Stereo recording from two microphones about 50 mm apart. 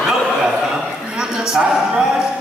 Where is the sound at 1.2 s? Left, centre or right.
Centre.